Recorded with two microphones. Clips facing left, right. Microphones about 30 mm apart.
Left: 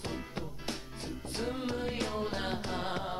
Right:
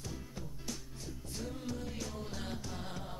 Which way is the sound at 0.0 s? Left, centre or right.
Left.